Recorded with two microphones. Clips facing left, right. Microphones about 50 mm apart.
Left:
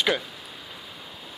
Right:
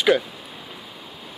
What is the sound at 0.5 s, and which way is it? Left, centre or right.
Rain, centre.